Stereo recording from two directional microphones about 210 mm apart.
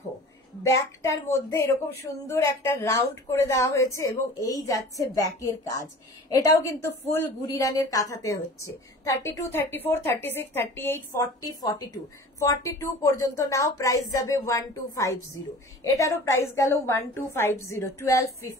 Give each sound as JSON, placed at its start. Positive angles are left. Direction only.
{"t": 0.7, "sound": "a woman's voice", "side_deg": 15}